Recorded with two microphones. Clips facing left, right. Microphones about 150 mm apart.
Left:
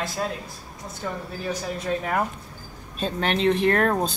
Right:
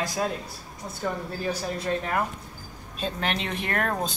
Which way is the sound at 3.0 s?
40° left (ahead or behind).